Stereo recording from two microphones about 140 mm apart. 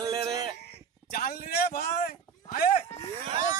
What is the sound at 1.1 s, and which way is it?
A man's voice, 90° left.